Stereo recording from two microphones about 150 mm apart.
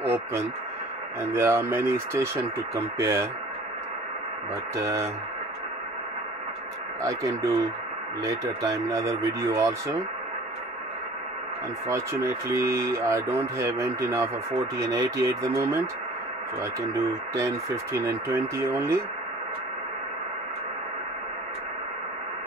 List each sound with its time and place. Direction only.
0.0 s a sound: 15° right (ahead or behind)
1.3 s speech: 15° right (ahead or behind)
4.7 s speech: 20° right (ahead or behind)
7.0 s speech: 20° right (ahead or behind)
11.9 s speech: 20° right (ahead or behind)
16.8 s speech: 20° right (ahead or behind)